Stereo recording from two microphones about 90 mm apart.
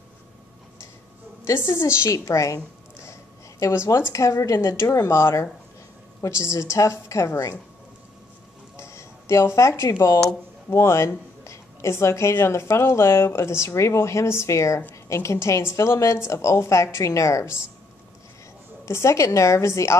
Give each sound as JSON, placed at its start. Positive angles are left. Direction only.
{"t": 1.4, "sound": "a woman's voice", "side_deg": 30}
{"t": 8.7, "sound": "a woman's voice", "side_deg": 30}
{"t": 18.9, "sound": "a woman's voice", "side_deg": 35}